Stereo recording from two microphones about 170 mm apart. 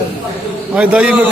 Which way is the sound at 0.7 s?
5° right (ahead or behind).